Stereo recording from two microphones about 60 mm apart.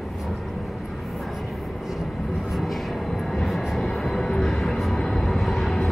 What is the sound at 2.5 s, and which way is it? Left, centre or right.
Vehicle, centre.